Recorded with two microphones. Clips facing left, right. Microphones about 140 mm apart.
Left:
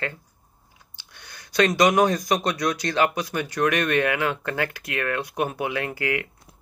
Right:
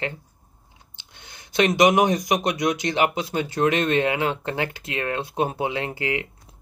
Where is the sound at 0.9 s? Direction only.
20° right (ahead or behind).